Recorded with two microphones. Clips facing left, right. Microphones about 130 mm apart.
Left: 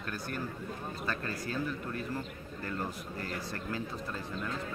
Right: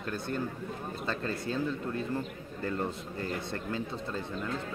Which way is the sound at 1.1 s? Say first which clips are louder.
Right 4 dB; 25° right (ahead or behind).